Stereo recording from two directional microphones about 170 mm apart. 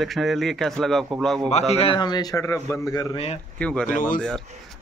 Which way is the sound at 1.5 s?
30° left (ahead or behind).